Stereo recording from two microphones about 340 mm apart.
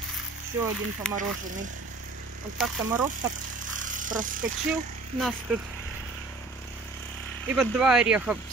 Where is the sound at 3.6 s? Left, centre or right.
Right.